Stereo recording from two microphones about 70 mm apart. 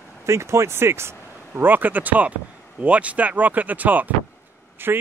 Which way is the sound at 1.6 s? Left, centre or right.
Right.